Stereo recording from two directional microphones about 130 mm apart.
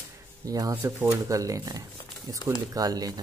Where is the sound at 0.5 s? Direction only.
25° right (ahead or behind).